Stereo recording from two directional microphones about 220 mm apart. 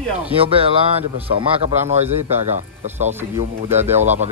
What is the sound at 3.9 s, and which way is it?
Speech, 30° right (ahead or behind).